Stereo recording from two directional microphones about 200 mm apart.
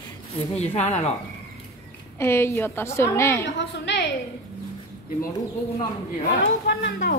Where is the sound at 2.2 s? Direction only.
10° left (ahead or behind).